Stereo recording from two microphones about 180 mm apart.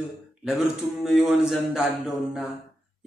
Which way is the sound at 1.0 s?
5° right (ahead or behind).